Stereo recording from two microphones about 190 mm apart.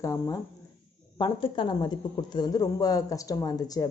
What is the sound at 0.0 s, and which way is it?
Speech, 15° left (ahead or behind).